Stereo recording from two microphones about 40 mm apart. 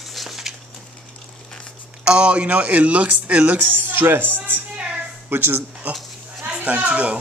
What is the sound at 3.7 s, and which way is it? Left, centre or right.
Speech, right.